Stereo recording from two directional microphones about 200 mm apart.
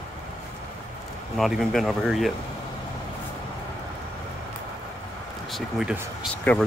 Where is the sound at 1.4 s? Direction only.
Centre (ahead or behind).